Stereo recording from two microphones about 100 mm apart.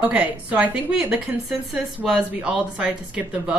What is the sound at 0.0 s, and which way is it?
Speech, 15° right (ahead or behind).